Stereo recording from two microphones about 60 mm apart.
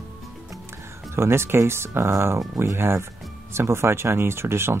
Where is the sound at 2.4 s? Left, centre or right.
Right.